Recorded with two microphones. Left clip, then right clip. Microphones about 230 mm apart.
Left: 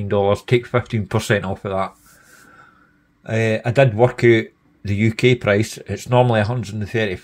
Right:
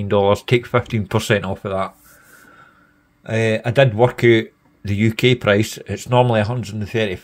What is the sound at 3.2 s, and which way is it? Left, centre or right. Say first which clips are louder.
Speech: right 1 dB; centre.